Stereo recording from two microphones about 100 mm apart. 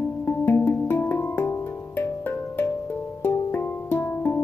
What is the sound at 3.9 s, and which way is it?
Music, 20° left (ahead or behind).